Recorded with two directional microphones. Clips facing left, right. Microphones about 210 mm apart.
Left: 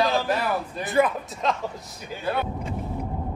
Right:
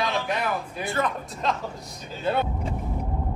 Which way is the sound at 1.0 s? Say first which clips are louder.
Left 6 dB; 10° left (ahead or behind).